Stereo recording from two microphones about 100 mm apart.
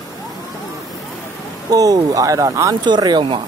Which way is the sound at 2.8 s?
45° right (ahead or behind).